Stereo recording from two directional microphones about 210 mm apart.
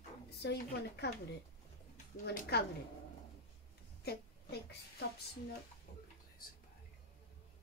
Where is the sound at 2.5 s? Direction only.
50° left (ahead or behind).